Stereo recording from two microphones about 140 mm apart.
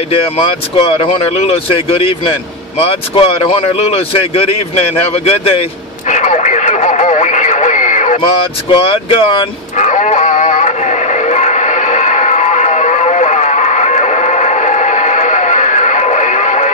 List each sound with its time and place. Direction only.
0.1 s speech: 40° left (ahead or behind)
6.0 s radio: 60° left (ahead or behind)
8.7 s speech: 40° left (ahead or behind)
9.8 s a sound: 60° left (ahead or behind)